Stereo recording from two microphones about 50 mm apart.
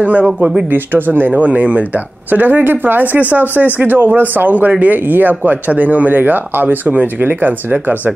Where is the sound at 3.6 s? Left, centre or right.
Centre.